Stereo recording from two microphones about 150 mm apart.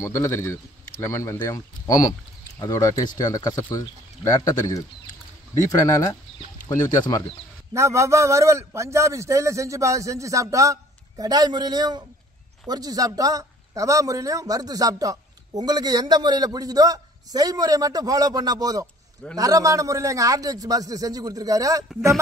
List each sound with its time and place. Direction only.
0.0 s a man's voice: 15° left (ahead or behind)
6.7 s speech: 20° left (ahead or behind)
7.7 s speech: 20° right (ahead or behind)